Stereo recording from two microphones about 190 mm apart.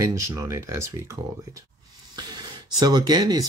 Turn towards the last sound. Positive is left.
turn(degrees=-20)  # may be behind; listen again after turning